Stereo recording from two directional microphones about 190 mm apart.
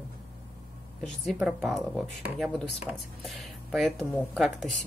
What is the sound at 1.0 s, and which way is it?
Speech, centre (ahead or behind).